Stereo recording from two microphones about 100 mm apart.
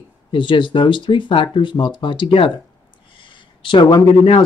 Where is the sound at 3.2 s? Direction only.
55° left (ahead or behind).